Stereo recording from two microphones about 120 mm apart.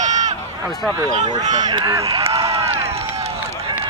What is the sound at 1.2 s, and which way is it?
Speech, 35° right (ahead or behind).